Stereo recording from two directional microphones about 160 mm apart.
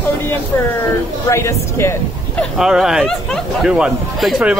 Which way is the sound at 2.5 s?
Centre (ahead or behind).